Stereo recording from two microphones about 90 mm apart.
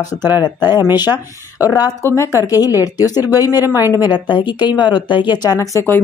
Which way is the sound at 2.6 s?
45° left (ahead or behind).